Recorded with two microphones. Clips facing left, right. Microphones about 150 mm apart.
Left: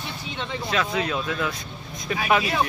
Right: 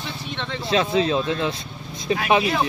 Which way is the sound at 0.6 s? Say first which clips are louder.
Right 6 dB; 30° right (ahead or behind).